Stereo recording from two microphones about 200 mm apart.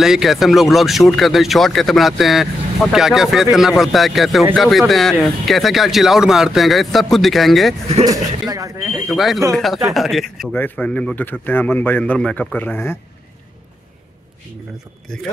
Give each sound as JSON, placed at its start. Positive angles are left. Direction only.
{"t": 0.0, "sound": "speech", "side_deg": 0}
{"t": 8.0, "sound": "speech", "side_deg": -20}
{"t": 9.1, "sound": "a man's voice", "side_deg": 0}